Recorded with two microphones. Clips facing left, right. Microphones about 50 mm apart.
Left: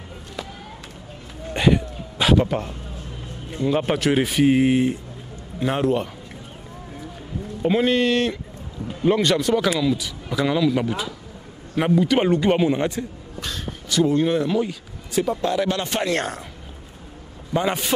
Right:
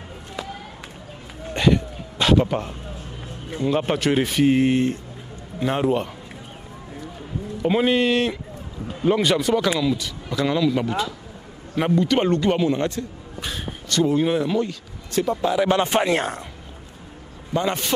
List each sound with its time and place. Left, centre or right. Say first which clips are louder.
1.5 s a sound: even; centre
3.6 s speech: left 1 dB; centre
7.6 s a man's voice: even; centre
13.4 s speech: even; centre
13.8 s speech: left 1 dB; centre
14.6 s speech: even; centre
15.7 s speech: right 4 dB; right
16.2 s speech: right 1 dB; centre
17.6 s a man's voice: left 1 dB; centre